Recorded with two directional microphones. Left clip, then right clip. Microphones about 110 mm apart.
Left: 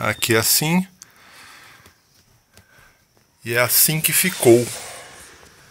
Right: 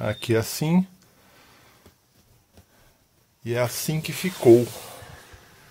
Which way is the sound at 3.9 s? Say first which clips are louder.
Left 9 dB; 5° right (ahead or behind).